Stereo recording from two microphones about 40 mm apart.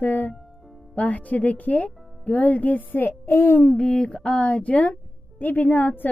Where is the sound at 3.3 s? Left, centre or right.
Left.